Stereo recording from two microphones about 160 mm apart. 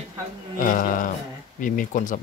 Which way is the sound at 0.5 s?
55° left (ahead or behind).